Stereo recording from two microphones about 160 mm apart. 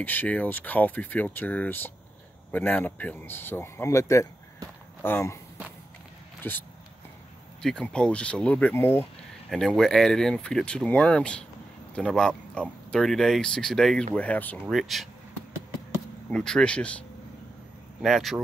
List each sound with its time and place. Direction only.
0.0 s speech: 10° left (ahead or behind)
6.4 s speech: 10° left (ahead or behind)
7.6 s speech: 5° left (ahead or behind)
9.5 s speech: 5° left (ahead or behind)
16.3 s speech: 5° left (ahead or behind)
18.0 s speech: centre (ahead or behind)